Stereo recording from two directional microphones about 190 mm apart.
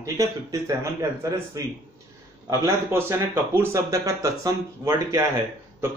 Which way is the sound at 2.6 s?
15° right (ahead or behind).